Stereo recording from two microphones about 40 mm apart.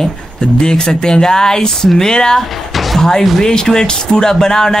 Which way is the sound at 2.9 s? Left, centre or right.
Centre.